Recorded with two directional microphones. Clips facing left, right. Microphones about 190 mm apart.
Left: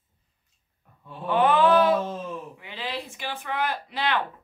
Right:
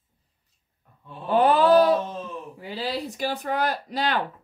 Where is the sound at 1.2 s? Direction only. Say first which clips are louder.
Right 1 dB; 35° right (ahead or behind).